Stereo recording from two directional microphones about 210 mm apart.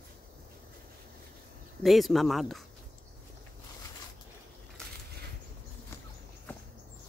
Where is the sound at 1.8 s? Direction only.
Centre (ahead or behind).